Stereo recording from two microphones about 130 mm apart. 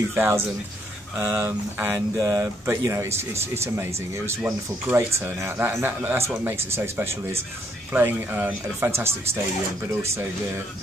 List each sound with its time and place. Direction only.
0.1 s speech: 15° right (ahead or behind)